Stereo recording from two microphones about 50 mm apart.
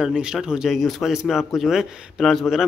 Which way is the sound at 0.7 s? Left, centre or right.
Centre.